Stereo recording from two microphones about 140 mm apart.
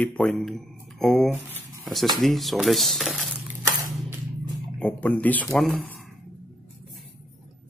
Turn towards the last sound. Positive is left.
turn(degrees=5)  # may be behind; listen again after turning